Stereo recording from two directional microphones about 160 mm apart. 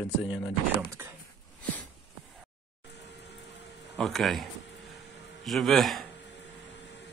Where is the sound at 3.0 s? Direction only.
90° left.